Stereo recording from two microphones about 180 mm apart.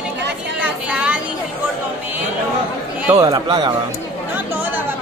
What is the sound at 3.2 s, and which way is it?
Speech, 25° right (ahead or behind).